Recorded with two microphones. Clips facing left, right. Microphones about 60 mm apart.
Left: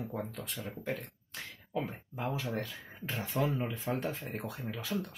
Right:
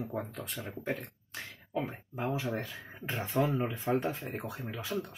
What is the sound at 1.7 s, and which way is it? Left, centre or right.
Speech, centre.